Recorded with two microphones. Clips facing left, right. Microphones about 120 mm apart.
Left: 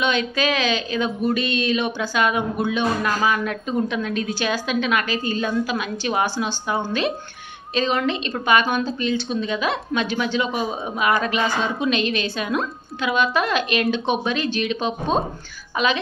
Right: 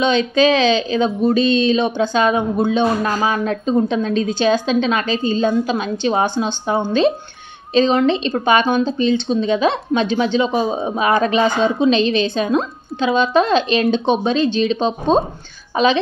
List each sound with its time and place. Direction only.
0.0 s a woman's voice: 30° right (ahead or behind)